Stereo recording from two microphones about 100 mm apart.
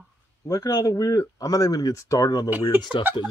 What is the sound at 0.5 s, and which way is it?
Speech, 35° left (ahead or behind).